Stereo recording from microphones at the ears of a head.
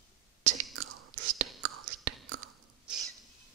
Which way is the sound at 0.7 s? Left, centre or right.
Right.